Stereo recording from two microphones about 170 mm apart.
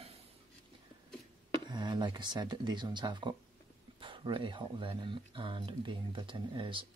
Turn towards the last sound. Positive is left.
turn(degrees=-30)  # may be behind; listen again after turning